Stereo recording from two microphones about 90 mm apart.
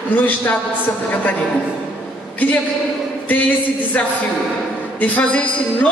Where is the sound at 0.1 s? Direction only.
20° left (ahead or behind).